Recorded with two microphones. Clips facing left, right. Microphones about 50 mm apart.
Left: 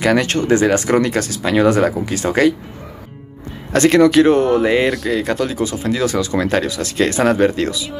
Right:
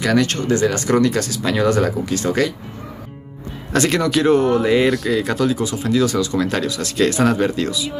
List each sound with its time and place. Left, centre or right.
0.0 s speech: left
3.7 s speech: centre
5.9 s speech: centre
7.7 s speech: centre